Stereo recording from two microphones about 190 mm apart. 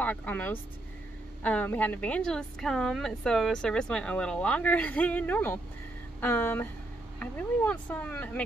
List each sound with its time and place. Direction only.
0.0 s a woman's voice: 10° left (ahead or behind)